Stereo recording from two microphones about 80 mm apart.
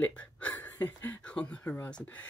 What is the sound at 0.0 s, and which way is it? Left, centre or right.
Hiccup, centre.